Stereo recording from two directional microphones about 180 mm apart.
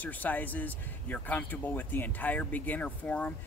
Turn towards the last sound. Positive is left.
turn(degrees=10)  # may be behind; listen again after turning